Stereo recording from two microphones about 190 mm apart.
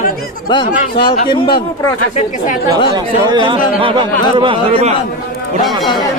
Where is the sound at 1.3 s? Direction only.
25° left (ahead or behind).